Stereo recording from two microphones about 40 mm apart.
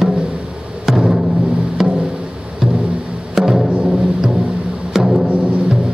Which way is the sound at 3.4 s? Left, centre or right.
Centre.